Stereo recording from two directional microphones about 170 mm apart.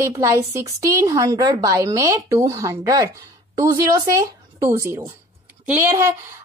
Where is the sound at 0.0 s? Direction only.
15° right (ahead or behind).